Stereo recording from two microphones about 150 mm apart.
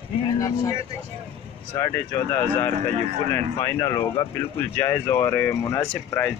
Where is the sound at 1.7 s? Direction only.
20° left (ahead or behind).